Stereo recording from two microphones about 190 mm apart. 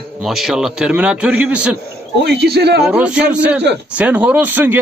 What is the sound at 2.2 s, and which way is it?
Speech, 60° right (ahead or behind).